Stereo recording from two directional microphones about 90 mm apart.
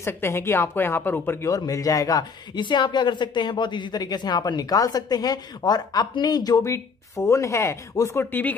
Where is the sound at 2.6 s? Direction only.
60° left (ahead or behind).